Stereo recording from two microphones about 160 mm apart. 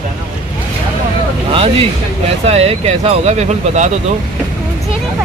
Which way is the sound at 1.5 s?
35° right (ahead or behind).